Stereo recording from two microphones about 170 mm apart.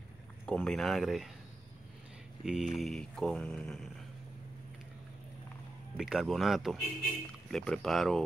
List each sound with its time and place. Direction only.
0.5 s speech: 5° left (ahead or behind)
2.4 s speech: centre (ahead or behind)
5.9 s speech: 5° right (ahead or behind)